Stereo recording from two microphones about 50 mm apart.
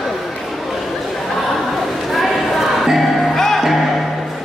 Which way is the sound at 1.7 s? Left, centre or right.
Centre.